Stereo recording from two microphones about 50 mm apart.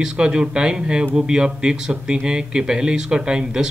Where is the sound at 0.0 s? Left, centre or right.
Centre.